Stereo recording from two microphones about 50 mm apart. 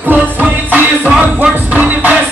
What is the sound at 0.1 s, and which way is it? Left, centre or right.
Music, right.